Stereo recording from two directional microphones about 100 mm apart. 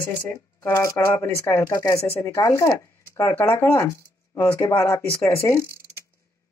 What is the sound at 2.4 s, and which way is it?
Speech, 30° left (ahead or behind).